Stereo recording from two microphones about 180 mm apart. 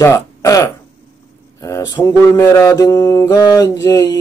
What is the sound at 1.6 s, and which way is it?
Mantra, 15° left (ahead or behind).